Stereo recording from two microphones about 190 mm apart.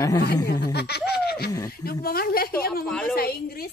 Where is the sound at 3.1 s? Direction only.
55° left (ahead or behind).